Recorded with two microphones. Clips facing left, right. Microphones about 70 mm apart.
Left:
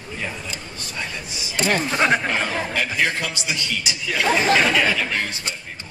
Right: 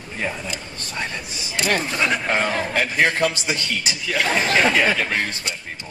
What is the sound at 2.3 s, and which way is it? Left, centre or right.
Speech, right.